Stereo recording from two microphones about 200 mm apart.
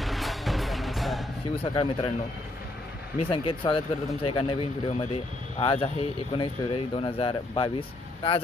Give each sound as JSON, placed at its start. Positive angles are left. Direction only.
{"t": 0.0, "sound": "music", "side_deg": 0}
{"t": 1.7, "sound": "speech", "side_deg": 25}
{"t": 3.2, "sound": "speech", "side_deg": 25}